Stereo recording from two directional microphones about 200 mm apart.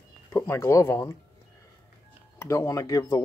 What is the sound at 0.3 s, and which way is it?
Speech, 10° left (ahead or behind).